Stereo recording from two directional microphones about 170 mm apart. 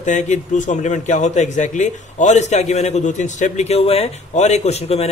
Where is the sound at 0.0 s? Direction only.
45° left (ahead or behind).